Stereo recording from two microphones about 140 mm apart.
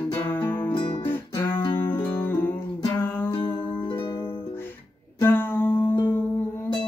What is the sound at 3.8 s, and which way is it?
Music, 40° left (ahead or behind).